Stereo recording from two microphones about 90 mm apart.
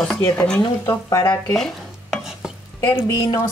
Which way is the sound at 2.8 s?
40° left (ahead or behind).